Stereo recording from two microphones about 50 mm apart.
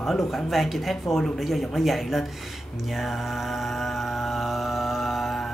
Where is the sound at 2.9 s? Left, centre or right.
Centre.